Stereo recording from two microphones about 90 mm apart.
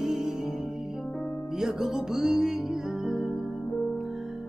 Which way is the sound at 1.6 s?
5° right (ahead or behind).